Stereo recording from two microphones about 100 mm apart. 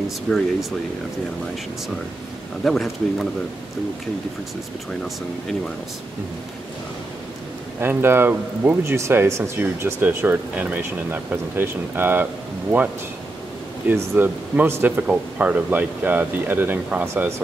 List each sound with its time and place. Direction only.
0.3 s a man's voice: centre (ahead or behind)
2.6 s a man's voice: centre (ahead or behind)
7.8 s speech: 20° right (ahead or behind)
13.8 s speech: 20° right (ahead or behind)